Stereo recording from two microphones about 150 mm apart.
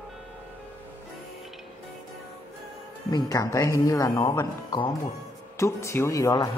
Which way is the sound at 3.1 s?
20° left (ahead or behind).